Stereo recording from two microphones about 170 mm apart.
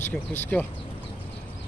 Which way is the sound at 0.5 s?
5° left (ahead or behind).